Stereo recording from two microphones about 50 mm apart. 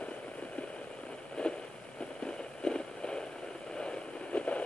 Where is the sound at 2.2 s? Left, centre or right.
Centre.